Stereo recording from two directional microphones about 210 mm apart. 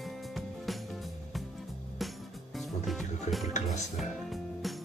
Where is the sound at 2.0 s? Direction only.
Centre (ahead or behind).